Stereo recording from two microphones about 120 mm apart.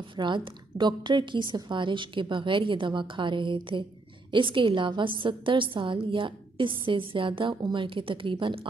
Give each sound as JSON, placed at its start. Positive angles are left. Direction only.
{"t": 0.1, "sound": "a woman's voice", "side_deg": -40}